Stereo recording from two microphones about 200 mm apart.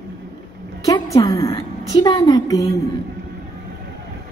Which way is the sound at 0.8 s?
15° left (ahead or behind).